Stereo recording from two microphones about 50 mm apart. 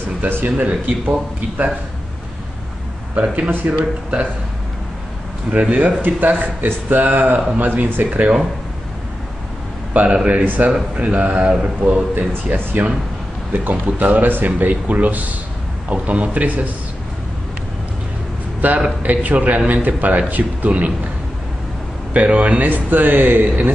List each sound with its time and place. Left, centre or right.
0.3 s a man's voice: right
3.2 s a man's voice: right
5.5 s a man's voice: right
10.0 s a man's voice: right
11.8 s a man's voice: right
18.6 s a man's voice: right
22.1 s a man's voice: right